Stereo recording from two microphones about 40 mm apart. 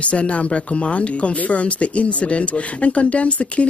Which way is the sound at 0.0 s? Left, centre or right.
Left.